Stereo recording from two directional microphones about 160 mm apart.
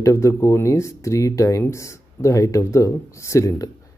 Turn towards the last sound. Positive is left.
turn(degrees=20)  # may be behind; listen again after turning